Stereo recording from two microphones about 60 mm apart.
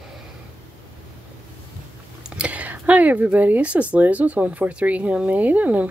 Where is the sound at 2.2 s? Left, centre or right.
Right.